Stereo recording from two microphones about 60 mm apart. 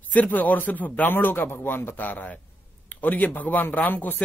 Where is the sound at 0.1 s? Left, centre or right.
Left.